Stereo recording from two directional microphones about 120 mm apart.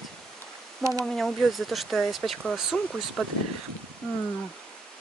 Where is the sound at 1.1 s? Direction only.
Centre (ahead or behind).